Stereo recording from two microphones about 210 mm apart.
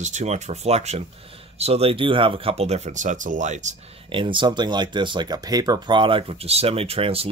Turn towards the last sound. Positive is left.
turn(degrees=-25)  # may be behind; listen again after turning